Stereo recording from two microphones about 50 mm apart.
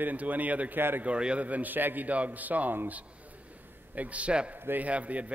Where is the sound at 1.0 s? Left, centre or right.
Right.